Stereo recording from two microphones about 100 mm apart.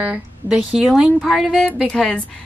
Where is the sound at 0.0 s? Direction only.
15° right (ahead or behind).